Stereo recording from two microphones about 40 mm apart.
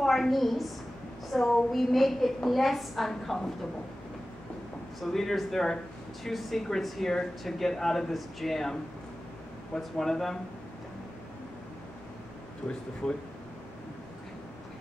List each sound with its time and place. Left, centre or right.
0.0 s a woman's voice: centre
5.0 s a woman's voice: centre
9.8 s speech: centre
13.0 s speech: centre